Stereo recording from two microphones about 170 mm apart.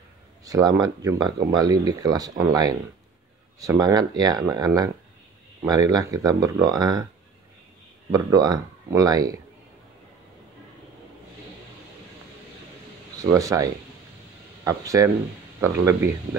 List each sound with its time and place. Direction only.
0.5 s speech: 25° right (ahead or behind)
8.1 s speech: 20° right (ahead or behind)
13.3 s speech: 20° right (ahead or behind)